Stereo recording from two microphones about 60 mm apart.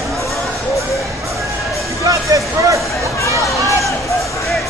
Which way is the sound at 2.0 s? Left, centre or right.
Right.